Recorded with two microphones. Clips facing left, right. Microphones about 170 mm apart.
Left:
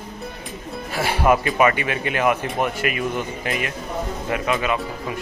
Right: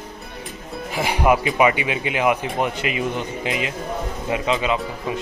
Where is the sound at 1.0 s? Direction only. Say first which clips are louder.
Even; 15° right (ahead or behind).